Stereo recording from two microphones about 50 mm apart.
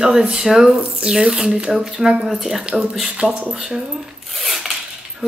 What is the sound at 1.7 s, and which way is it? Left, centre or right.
Speech, centre.